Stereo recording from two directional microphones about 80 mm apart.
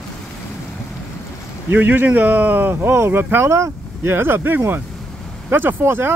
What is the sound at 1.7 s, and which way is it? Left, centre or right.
Speech, right.